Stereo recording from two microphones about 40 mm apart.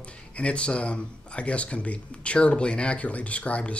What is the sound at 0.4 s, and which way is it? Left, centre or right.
Speech, left.